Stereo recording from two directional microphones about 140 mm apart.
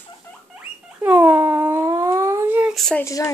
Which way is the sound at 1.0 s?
15° right (ahead or behind).